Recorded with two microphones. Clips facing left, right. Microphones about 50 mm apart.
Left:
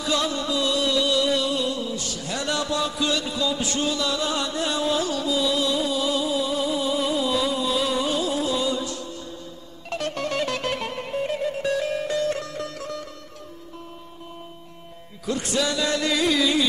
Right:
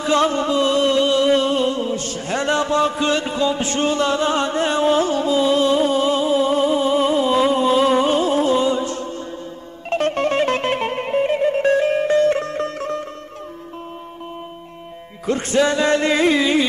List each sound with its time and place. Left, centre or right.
0.0 s music: right
15.2 s music: right